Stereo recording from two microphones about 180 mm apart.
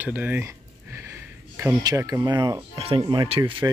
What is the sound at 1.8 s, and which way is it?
Speech, 20° right (ahead or behind).